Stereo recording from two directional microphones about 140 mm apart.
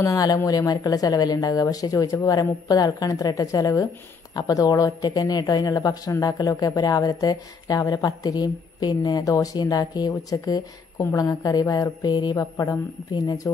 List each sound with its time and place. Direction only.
0.0 s a woman's voice: 25° left (ahead or behind)